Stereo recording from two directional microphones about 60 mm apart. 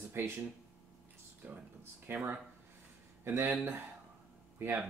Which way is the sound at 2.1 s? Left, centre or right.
Right.